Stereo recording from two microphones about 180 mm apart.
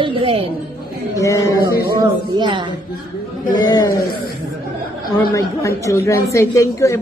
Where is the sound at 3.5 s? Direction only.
20° left (ahead or behind).